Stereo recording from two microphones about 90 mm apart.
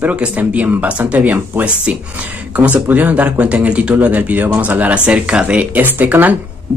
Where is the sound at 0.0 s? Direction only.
15° right (ahead or behind).